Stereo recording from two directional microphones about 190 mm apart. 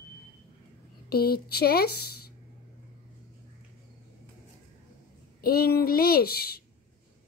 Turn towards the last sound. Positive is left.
turn(degrees=55)  # may be behind; listen again after turning